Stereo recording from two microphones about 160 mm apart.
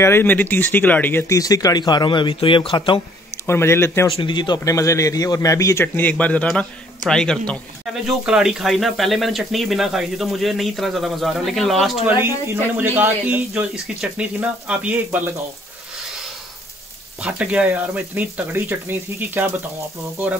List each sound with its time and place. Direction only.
0.0 s speech: 15° left (ahead or behind); by 3.0 s 30° left (ahead or behind)
3.4 s speech: 15° left (ahead or behind)
4.1 s speech: 30° left (ahead or behind); by 12.0 s centre (ahead or behind)
12.7 s speech: 10° right (ahead or behind)
17.2 s speech: 5° right (ahead or behind)